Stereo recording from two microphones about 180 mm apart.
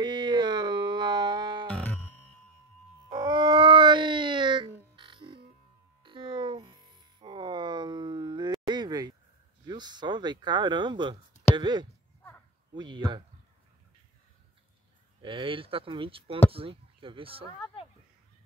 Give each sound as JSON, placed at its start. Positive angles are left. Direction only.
{"t": 0.0, "sound": "music", "side_deg": -25}
{"t": 1.7, "sound": "music", "side_deg": 10}
{"t": 3.1, "sound": "a sound", "side_deg": -25}
{"t": 4.9, "sound": "music", "side_deg": -25}
{"t": 9.7, "sound": "speech", "side_deg": -25}
{"t": 15.2, "sound": "speech", "side_deg": -30}